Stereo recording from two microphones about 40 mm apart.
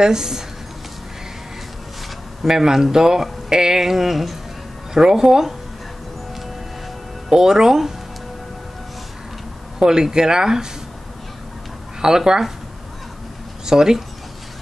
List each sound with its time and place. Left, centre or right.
0.0 s speech: centre
2.4 s speech: centre
4.9 s speech: centre
7.2 s speech: centre
9.8 s speech: centre
12.0 s speech: centre
13.7 s speech: centre